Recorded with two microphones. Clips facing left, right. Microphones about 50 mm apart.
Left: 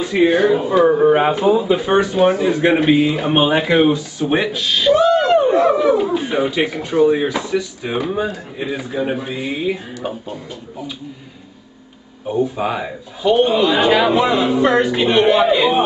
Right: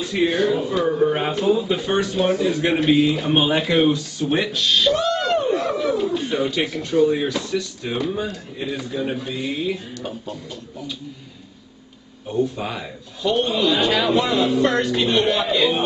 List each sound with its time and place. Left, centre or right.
0.0 s speech: centre
0.8 s speech: left
12.3 s speech: centre